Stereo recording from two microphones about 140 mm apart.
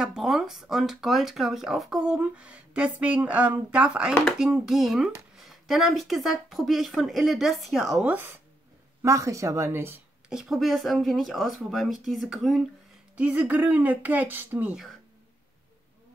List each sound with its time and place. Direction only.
0.0 s speech: centre (ahead or behind)
4.1 s speech: 5° left (ahead or behind); by 9.9 s 20° right (ahead or behind)
10.3 s speech: 5° right (ahead or behind)